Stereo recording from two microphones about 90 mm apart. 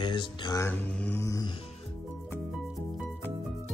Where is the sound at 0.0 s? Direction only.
60° left (ahead or behind).